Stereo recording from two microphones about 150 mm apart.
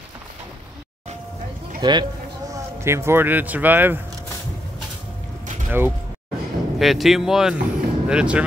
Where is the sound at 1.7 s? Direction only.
30° right (ahead or behind).